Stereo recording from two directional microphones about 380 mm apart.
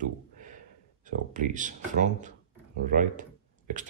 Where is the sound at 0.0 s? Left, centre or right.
Centre.